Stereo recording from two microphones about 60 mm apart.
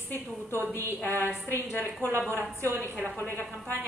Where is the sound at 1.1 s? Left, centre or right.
Left.